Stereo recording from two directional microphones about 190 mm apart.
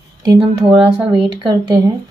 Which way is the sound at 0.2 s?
20° right (ahead or behind).